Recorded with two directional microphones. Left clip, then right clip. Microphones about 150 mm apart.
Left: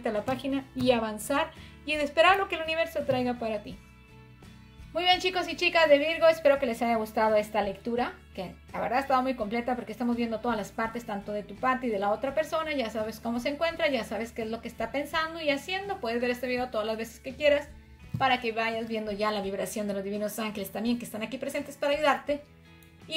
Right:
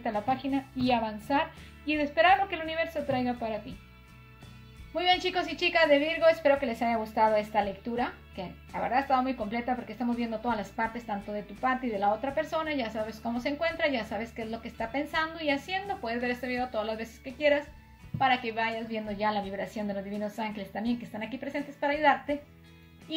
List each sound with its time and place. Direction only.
0.0 s a woman's voice: 50° left (ahead or behind)
4.9 s a woman's voice: 50° left (ahead or behind)